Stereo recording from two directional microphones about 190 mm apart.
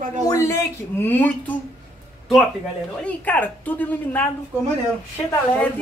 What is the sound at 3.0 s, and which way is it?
A woman's voice, 10° left (ahead or behind).